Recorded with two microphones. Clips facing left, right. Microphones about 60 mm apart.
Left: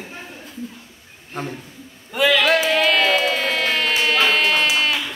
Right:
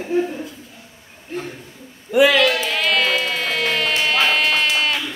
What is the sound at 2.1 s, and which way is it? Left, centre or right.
Speech, centre.